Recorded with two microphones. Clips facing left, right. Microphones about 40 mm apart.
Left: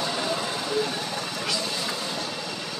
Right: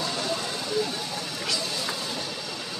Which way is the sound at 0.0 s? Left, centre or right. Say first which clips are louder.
Left 2 dB; centre.